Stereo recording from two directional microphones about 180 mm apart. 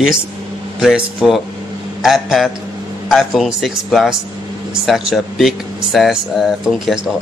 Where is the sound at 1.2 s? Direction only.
Centre (ahead or behind).